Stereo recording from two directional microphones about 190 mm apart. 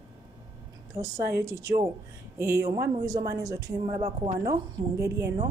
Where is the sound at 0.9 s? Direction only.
15° right (ahead or behind).